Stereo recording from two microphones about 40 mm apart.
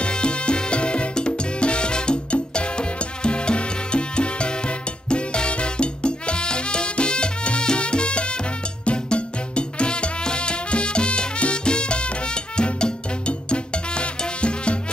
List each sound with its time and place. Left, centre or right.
0.0 s salsa music: left
8.8 s music: left